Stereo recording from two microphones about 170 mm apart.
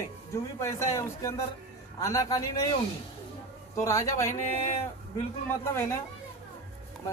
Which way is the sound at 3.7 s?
15° left (ahead or behind).